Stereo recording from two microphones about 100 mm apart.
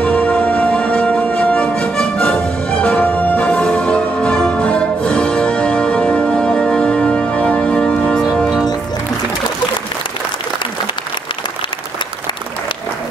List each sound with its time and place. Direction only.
0.0 s music: 15° left (ahead or behind)
8.2 s music: centre (ahead or behind)